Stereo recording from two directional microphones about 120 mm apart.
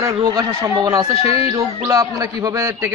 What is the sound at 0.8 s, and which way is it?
Speech, 30° right (ahead or behind).